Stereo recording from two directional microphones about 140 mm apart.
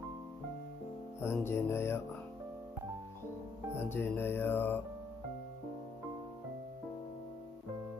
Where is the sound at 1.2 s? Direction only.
20° left (ahead or behind).